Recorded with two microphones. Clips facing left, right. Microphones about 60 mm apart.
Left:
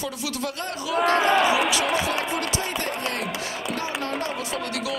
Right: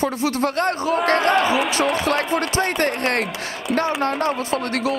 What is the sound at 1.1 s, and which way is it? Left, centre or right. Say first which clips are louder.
Speech: right 1 dB; centre.